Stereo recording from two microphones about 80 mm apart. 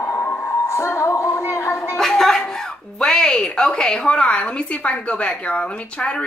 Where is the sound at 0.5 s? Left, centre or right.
Left.